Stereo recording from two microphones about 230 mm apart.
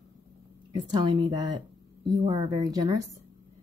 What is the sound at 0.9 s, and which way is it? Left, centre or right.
Speech, centre.